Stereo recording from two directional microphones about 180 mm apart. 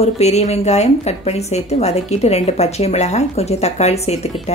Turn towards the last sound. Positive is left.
turn(degrees=35)  # may be behind; listen again after turning